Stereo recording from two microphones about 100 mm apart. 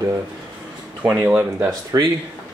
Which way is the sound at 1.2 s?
25° right (ahead or behind).